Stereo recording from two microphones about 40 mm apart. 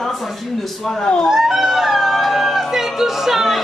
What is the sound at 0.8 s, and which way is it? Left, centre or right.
Speech, centre.